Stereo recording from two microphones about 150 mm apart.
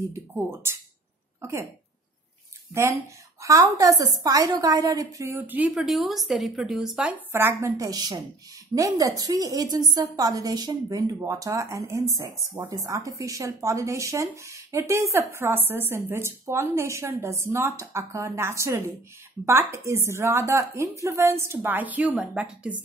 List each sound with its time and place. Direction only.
0.1 s a woman's voice: 15° right (ahead or behind)
2.7 s a woman's voice: 20° right (ahead or behind)
5.8 s a woman's voice: centre (ahead or behind)